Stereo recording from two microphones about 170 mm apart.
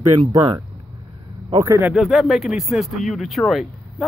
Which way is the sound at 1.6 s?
15° right (ahead or behind).